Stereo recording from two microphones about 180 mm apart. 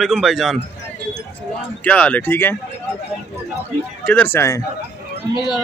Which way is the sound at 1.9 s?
5° left (ahead or behind).